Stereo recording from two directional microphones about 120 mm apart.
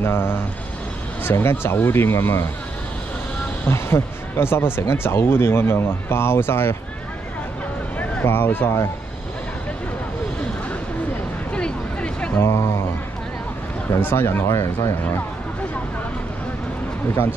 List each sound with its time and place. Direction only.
0.0 s speech: 20° left (ahead or behind)
3.6 s speech: 20° left (ahead or behind)
8.0 s speech: 15° left (ahead or behind)
11.5 s a sound: 10° left (ahead or behind)
12.4 s speech: 25° left (ahead or behind)
13.9 s speech: 20° left (ahead or behind)